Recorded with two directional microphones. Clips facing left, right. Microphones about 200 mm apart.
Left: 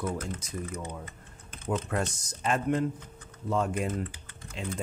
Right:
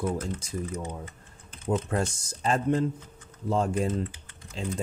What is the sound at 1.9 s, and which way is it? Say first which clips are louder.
Speech: right 2 dB; 30° right (ahead or behind).